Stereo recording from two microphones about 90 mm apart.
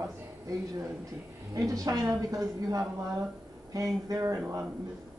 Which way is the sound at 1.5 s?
40° right (ahead or behind).